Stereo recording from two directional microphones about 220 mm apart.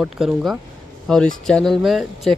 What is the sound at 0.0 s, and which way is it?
Speech, centre (ahead or behind).